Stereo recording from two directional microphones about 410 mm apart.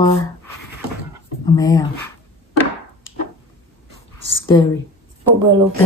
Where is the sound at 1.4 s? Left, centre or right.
Centre.